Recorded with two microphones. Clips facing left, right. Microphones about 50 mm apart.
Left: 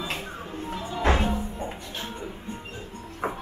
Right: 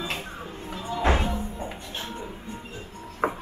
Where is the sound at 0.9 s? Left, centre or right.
Centre.